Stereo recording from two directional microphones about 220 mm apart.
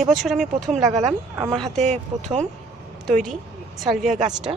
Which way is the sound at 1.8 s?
30° right (ahead or behind).